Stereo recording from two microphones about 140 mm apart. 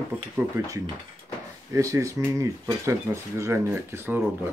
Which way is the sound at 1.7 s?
20° right (ahead or behind).